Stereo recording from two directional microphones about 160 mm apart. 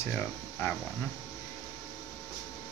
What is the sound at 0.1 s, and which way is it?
Speech, 15° left (ahead or behind).